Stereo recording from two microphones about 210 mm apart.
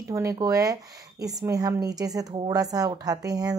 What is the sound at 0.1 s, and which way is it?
Speech, 15° right (ahead or behind).